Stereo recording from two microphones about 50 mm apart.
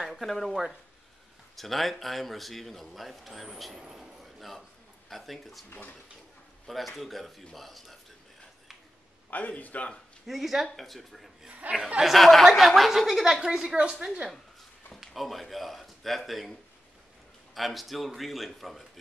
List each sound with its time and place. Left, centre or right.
0.0 s a sound: centre
0.5 s a woman's voice: centre
1.6 s a man's voice: centre
3.8 s a sound: centre
5.1 s a man's voice: centre
5.7 s a man's voice: left
6.7 s a man's voice: centre
9.3 s a man's voice: left
10.2 s a man's voice: centre
11.6 s speech: right
12.0 s a man's voice: centre
15.0 s speech: centre
17.6 s a man's voice: centre